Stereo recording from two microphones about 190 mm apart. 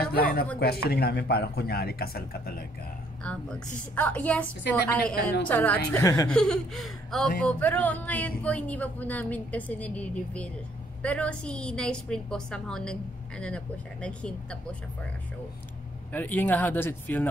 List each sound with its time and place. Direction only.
0.1 s speech: 55° left (ahead or behind)
3.3 s speech: 5° left (ahead or behind)
6.2 s a woman's voice: 5° left (ahead or behind)
14.0 s a woman's voice: 5° left (ahead or behind)
16.1 s speech: 10° left (ahead or behind)